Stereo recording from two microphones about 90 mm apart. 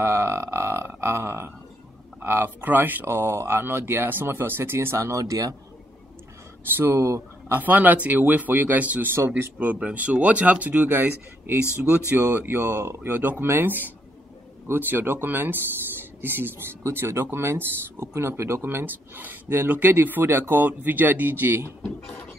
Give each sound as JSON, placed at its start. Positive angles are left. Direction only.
{"t": 0.0, "sound": "a sound", "side_deg": -25}
{"t": 2.2, "sound": "speech", "side_deg": -25}
{"t": 6.8, "sound": "speech", "side_deg": -30}